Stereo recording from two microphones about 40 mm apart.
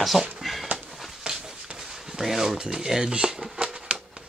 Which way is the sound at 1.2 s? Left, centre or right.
Centre.